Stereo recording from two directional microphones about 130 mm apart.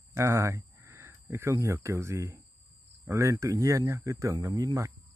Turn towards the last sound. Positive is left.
turn(degrees=-25)  # may be behind; listen again after turning